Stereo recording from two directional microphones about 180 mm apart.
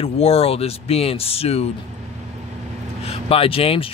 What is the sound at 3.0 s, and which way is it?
Vehicle, 35° left (ahead or behind).